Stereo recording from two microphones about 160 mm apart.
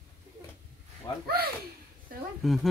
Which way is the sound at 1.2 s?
70° right (ahead or behind).